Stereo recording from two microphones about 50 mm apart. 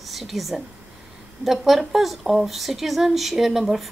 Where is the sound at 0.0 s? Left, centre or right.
Centre.